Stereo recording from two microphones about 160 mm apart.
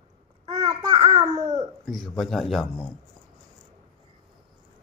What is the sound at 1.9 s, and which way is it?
Speech, centre (ahead or behind).